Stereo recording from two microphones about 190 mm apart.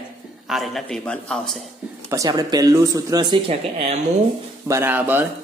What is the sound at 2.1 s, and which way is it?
Speech, 20° right (ahead or behind).